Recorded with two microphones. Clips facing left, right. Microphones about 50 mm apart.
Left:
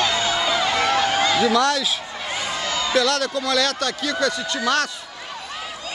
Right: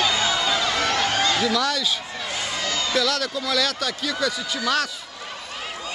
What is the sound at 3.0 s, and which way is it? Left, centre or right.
Speech, centre.